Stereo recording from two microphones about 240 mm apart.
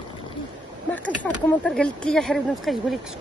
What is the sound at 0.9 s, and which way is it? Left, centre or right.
Speech, centre.